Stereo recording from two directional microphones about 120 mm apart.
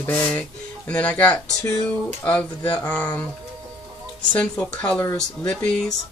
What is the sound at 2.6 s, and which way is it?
Speech, 40° left (ahead or behind).